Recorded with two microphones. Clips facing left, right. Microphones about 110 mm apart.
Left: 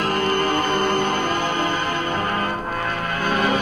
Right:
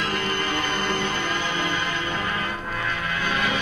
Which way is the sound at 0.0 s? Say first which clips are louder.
Left 6 dB; 45° left (ahead or behind).